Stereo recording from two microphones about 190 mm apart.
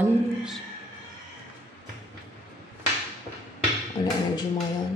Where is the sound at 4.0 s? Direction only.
25° left (ahead or behind).